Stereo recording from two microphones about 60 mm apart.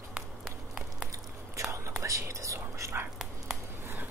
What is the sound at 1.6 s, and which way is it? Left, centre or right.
Whispering, right.